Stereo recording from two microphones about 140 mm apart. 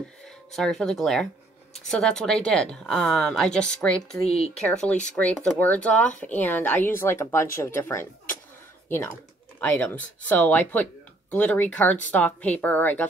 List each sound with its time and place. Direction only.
0.5 s a woman's voice: centre (ahead or behind); by 8.1 s 20° left (ahead or behind)
9.6 s speech: 10° left (ahead or behind)